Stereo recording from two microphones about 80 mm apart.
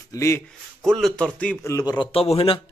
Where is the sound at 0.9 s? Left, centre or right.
Centre.